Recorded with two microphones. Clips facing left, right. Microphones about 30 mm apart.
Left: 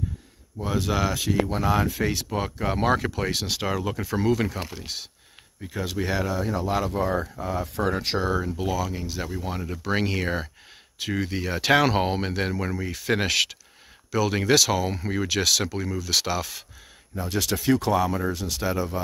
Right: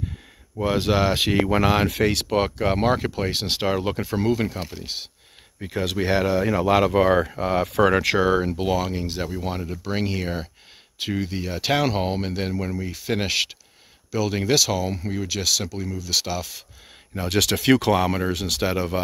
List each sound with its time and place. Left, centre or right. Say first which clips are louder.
0.7 s speech: right 5 dB; right
1.1 s speech: right 5 dB; right
2.8 s speech: right 2 dB; centre
4.0 s speech: right 1 dB; centre
4.8 s speech: right 2 dB; centre
5.6 s speech: right 4 dB; right
6.4 s speech: right 7 dB; right
7.3 s speech: right 7 dB; right
8.4 s speech: right 4 dB; right
9.6 s speech: left 1 dB; centre
17.1 s speech: right 5 dB; right
17.9 s speech: right 2 dB; right
18.3 s speech: right 5 dB; right